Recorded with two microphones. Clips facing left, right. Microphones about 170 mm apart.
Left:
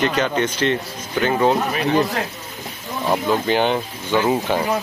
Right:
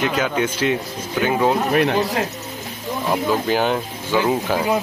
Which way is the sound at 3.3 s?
5° right (ahead or behind).